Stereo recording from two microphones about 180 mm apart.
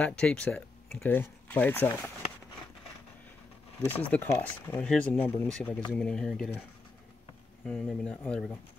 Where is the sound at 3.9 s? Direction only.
10° left (ahead or behind).